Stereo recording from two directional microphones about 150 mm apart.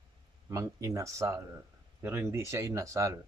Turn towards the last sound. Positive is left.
turn(degrees=-20)  # may be behind; listen again after turning